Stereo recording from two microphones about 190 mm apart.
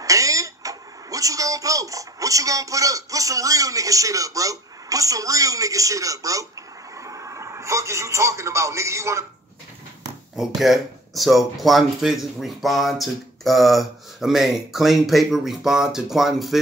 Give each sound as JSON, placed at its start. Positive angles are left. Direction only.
{"t": 0.0, "sound": "speech", "side_deg": -15}
{"t": 10.3, "sound": "speech", "side_deg": 0}